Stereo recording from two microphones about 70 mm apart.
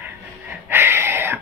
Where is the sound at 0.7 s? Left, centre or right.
Right.